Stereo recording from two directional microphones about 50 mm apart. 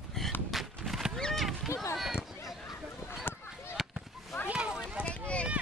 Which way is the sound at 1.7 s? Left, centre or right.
Left.